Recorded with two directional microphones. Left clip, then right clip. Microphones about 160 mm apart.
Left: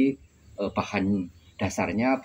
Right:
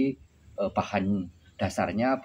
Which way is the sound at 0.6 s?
25° right (ahead or behind).